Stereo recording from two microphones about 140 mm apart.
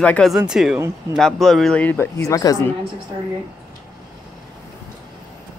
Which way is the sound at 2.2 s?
25° left (ahead or behind).